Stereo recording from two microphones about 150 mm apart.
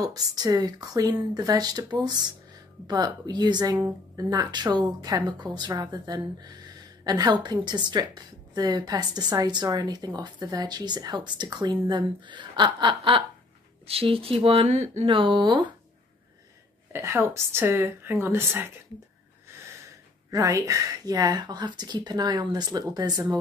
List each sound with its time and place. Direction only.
0.0 s a woman's voice: 25° right (ahead or behind); by 15.0 s 50° right (ahead or behind)
15.0 s speech: 35° right (ahead or behind)
16.9 s speech: 15° right (ahead or behind)
20.2 s a woman's voice: 20° right (ahead or behind)